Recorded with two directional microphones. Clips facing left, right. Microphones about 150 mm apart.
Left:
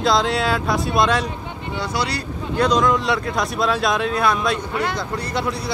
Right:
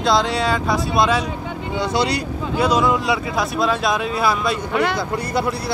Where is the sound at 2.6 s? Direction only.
5° right (ahead or behind).